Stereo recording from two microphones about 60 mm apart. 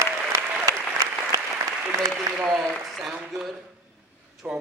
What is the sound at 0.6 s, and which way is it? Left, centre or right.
Applause, right.